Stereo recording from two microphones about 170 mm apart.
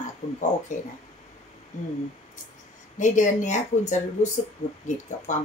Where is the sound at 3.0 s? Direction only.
45° left (ahead or behind).